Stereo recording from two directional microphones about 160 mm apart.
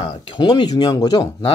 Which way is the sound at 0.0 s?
30° left (ahead or behind).